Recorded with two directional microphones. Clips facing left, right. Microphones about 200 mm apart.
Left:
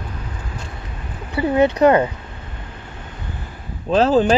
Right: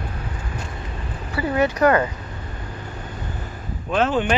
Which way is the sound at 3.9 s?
35° left (ahead or behind).